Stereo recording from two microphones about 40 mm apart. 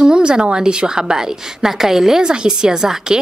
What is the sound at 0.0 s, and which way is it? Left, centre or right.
A woman's voice, right.